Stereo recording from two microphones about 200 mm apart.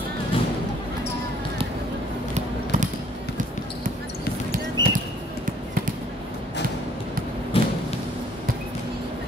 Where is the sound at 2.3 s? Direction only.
40° right (ahead or behind).